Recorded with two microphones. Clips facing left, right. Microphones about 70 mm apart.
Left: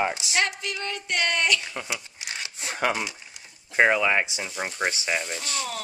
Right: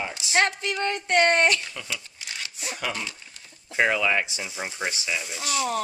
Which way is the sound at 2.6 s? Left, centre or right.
Left.